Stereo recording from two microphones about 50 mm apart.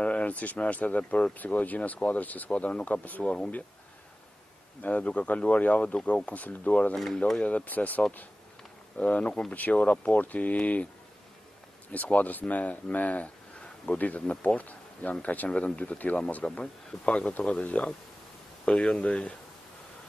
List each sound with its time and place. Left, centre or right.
0.0 s speech: left
3.3 s speech: centre
4.8 s speech: left
11.9 s speech: left